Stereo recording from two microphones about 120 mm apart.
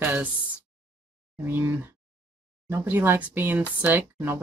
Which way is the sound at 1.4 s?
15° right (ahead or behind).